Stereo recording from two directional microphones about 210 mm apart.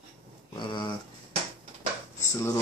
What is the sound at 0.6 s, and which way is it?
Speech, 20° left (ahead or behind).